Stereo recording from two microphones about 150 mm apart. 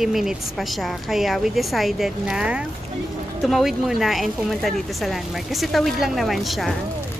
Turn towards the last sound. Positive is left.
turn(degrees=0)  # may be behind; listen again after turning